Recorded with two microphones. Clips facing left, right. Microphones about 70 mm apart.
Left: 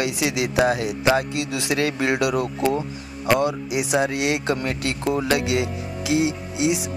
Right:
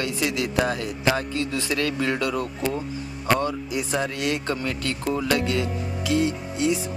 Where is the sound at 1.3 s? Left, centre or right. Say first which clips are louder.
Left 2 dB; left.